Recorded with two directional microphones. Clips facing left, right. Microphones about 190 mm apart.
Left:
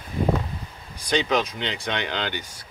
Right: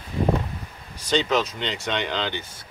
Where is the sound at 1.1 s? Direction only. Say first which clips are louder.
Right 1 dB; 15° left (ahead or behind).